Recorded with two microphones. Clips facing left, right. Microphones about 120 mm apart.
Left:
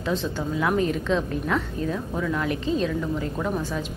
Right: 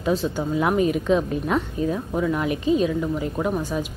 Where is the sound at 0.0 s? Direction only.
10° right (ahead or behind).